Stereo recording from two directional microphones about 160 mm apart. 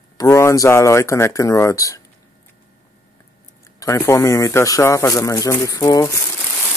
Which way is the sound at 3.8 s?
20° left (ahead or behind).